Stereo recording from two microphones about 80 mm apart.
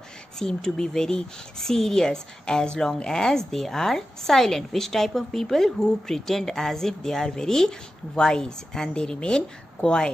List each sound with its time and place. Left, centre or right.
0.4 s speech: centre